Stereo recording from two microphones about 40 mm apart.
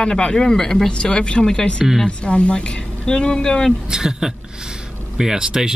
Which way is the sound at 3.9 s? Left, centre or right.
Centre.